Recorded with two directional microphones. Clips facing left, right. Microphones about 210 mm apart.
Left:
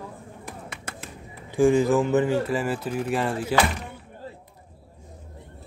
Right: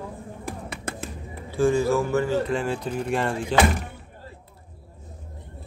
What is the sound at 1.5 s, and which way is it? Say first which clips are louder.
Speech: left 2 dB; 15° left (ahead or behind).